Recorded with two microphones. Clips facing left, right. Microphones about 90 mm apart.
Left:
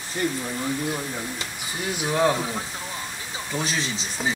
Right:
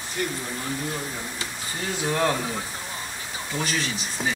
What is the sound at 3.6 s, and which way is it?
Speech, 20° left (ahead or behind).